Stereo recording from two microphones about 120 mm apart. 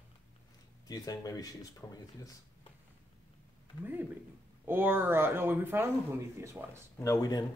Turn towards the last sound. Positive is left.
turn(degrees=30)  # may be behind; listen again after turning